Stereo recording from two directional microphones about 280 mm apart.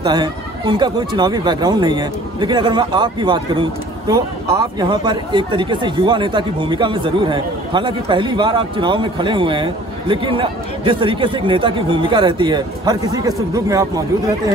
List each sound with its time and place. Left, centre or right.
0.0 s speech: centre